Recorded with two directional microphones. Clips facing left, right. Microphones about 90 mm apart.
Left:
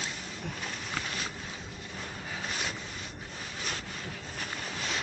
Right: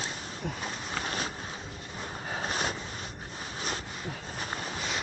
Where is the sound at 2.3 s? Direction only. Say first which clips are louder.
Right 5 dB; 40° right (ahead or behind).